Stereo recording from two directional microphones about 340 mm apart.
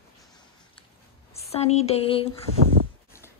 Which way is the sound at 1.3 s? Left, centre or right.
Centre.